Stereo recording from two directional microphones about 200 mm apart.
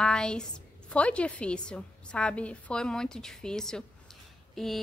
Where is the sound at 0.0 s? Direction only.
5° left (ahead or behind).